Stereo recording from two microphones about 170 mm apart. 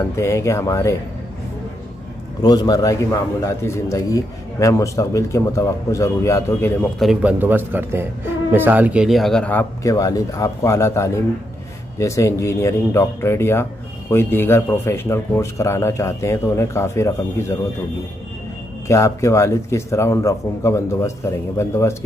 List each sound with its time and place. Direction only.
0.1 s a man's voice: 15° left (ahead or behind)
2.4 s a man's voice: 25° left (ahead or behind)
7.0 s a man's voice: 5° right (ahead or behind); by 17.6 s 15° left (ahead or behind)
18.9 s a man's voice: 15° left (ahead or behind)